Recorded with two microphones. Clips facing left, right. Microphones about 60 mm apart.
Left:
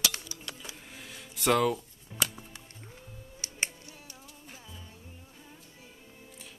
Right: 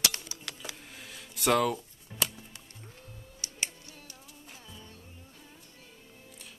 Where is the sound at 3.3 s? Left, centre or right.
Left.